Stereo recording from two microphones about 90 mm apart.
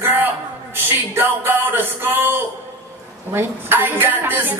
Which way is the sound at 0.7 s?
25° right (ahead or behind).